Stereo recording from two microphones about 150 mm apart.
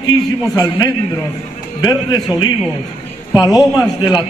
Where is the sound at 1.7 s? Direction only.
25° left (ahead or behind).